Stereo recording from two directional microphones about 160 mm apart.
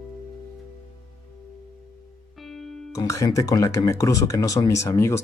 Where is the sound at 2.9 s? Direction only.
20° left (ahead or behind).